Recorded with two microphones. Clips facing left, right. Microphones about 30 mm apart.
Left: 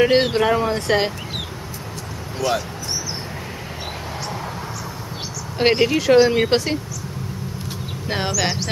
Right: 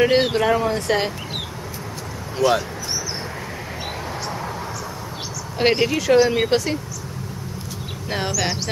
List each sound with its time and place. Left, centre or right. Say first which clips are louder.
0.0 s speech: left 1 dB; centre
2.3 s speech: right 3 dB; centre
5.6 s speech: left 2 dB; centre
6.5 s speech: left 1 dB; left
8.1 s speech: left 1 dB; centre